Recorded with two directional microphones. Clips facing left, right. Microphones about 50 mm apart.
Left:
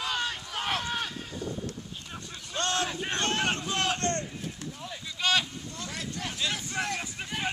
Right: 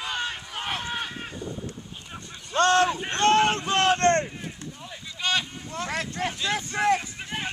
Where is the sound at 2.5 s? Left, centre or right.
Right.